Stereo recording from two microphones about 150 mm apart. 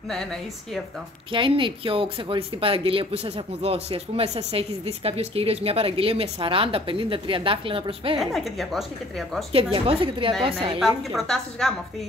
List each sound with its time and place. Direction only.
0.1 s speech: 5° left (ahead or behind)
1.3 s speech: 35° right (ahead or behind)
8.2 s speech: centre (ahead or behind)
9.5 s speech: 40° right (ahead or behind)
11.1 s speech: centre (ahead or behind)